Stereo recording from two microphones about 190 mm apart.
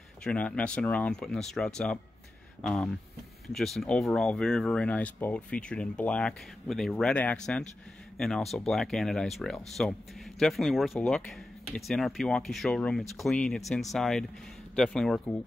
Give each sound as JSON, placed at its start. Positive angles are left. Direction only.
{"t": 0.2, "sound": "speech", "side_deg": 5}